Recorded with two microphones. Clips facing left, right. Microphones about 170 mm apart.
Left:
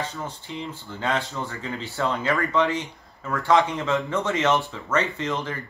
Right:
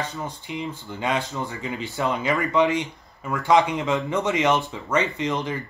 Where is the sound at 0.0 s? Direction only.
15° right (ahead or behind).